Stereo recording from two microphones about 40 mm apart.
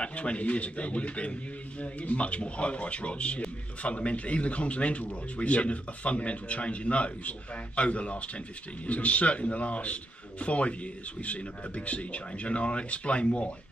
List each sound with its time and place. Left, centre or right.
0.0 s speech: left